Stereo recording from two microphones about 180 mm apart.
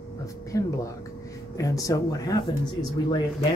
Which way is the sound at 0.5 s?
15° left (ahead or behind).